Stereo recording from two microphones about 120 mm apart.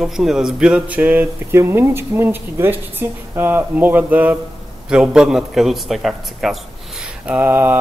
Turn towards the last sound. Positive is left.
turn(degrees=-15)  # may be behind; listen again after turning